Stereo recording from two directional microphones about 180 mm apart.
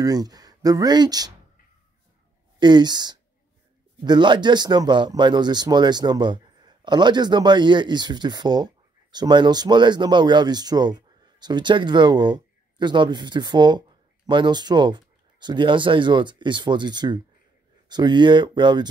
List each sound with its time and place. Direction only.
0.0 s speech: 20° right (ahead or behind)
2.6 s speech: 25° right (ahead or behind)